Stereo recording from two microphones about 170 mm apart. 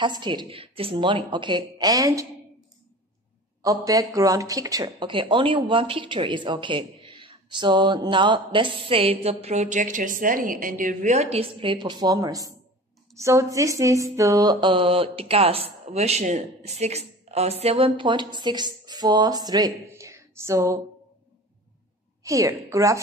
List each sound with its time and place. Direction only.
0.0 s speech: 25° right (ahead or behind)
3.6 s speech: 20° right (ahead or behind)
22.2 s speech: 20° right (ahead or behind)